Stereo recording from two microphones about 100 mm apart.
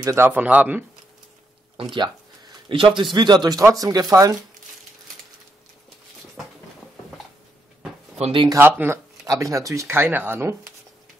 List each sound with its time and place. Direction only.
0.0 s speech: 25° right (ahead or behind)
2.0 s speech: 55° right (ahead or behind); by 4.4 s 35° right (ahead or behind)
8.2 s speech: 65° right (ahead or behind)
8.5 s speech: 20° right (ahead or behind)